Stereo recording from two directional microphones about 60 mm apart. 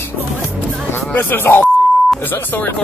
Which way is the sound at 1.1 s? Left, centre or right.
Left.